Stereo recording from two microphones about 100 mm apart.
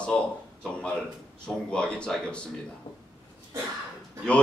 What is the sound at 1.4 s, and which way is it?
A man's voice, 10° left (ahead or behind).